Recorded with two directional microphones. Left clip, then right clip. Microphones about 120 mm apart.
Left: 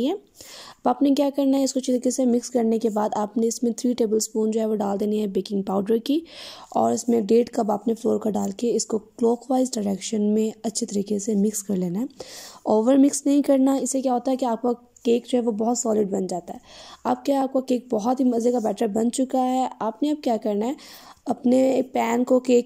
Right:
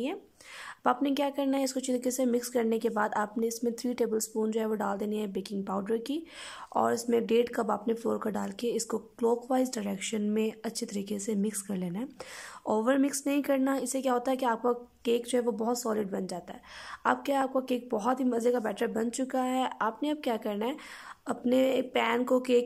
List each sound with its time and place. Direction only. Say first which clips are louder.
0.8 s speech: left 7 dB; 35° left (ahead or behind)